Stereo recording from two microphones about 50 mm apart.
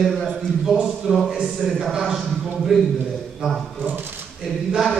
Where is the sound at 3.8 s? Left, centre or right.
Right.